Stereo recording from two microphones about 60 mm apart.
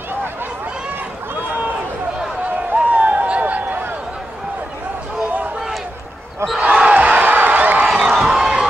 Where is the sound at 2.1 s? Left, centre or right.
Centre.